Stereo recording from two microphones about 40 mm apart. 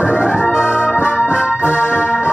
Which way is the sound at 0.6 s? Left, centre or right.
Left.